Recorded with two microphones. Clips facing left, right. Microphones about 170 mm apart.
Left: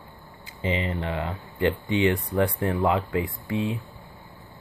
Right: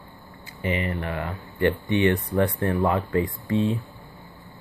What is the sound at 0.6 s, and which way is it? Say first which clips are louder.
Speech: even; 20° left (ahead or behind).